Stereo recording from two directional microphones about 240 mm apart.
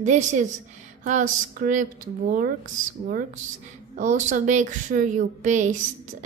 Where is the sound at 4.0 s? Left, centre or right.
Right.